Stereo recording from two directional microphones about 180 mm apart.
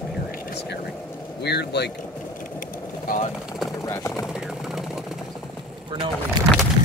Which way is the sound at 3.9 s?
15° left (ahead or behind).